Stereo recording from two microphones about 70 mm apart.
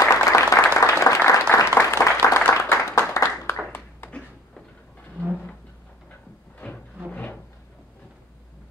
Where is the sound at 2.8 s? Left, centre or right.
Left.